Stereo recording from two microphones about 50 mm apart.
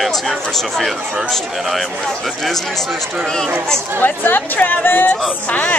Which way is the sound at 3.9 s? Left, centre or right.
Left.